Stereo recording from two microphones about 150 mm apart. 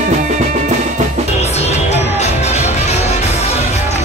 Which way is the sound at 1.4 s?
45° left (ahead or behind).